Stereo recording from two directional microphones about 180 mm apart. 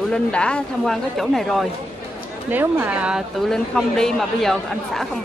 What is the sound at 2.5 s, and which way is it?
A woman's voice, 10° right (ahead or behind).